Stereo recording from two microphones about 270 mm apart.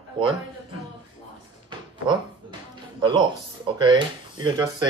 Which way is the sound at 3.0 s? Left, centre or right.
Centre.